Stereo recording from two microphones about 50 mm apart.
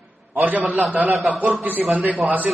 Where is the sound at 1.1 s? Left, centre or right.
Centre.